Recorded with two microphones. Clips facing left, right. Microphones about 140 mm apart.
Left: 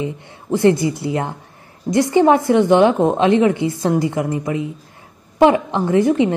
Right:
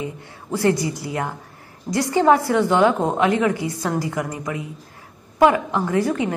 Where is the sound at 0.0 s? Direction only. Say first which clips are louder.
Left 5 dB; 20° left (ahead or behind).